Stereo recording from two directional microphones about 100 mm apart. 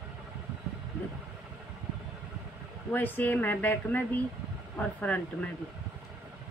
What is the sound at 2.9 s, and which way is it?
Speech, 20° left (ahead or behind).